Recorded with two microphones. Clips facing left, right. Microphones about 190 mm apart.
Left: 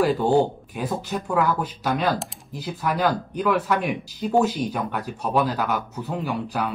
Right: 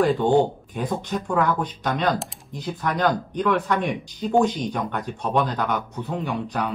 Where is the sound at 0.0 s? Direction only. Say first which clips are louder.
Right 1 dB; 5° left (ahead or behind).